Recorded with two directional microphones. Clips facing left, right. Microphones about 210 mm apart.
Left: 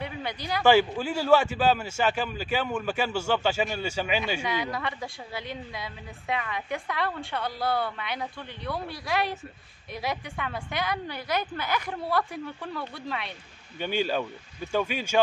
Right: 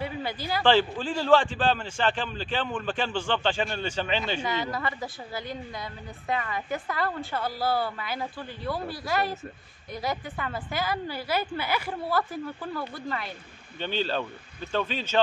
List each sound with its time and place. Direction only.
0.0 s speech: 5° right (ahead or behind)
0.7 s a man's voice: 10° left (ahead or behind)
13.7 s speech: 10° left (ahead or behind)